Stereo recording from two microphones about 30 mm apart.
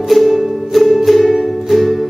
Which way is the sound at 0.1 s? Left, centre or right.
Centre.